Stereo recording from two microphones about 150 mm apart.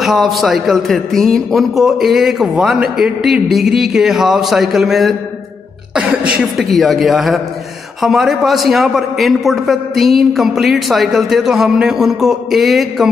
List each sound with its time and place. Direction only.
0.0 s a man's voice: centre (ahead or behind)
5.9 s a sound: 10° right (ahead or behind)
6.5 s a man's voice: centre (ahead or behind)